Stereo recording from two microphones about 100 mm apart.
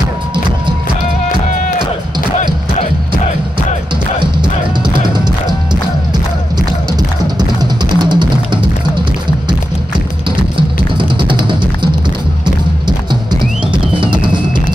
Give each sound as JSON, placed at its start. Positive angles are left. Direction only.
{"t": 4.2, "sound": "music", "side_deg": -50}
{"t": 7.0, "sound": "music", "side_deg": -45}
{"t": 11.0, "sound": "music", "side_deg": -55}
{"t": 13.9, "sound": "drum", "side_deg": -55}